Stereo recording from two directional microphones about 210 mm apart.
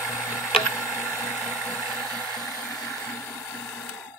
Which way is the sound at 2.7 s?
15° left (ahead or behind).